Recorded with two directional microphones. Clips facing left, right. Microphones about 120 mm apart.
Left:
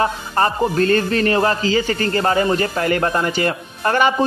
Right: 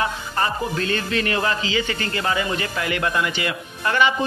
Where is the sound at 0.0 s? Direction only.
40° left (ahead or behind).